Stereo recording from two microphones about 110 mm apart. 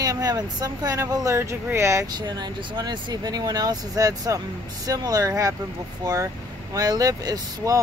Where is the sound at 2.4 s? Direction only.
40° right (ahead or behind).